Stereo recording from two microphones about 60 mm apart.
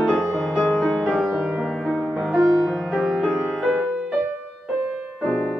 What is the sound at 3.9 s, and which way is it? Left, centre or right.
Music, centre.